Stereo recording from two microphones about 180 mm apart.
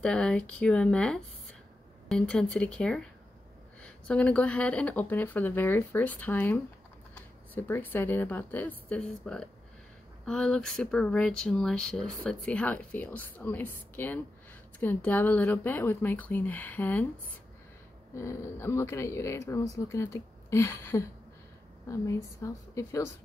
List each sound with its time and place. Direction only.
0.0 s a woman's voice: 5° left (ahead or behind)
18.1 s speech: 15° left (ahead or behind)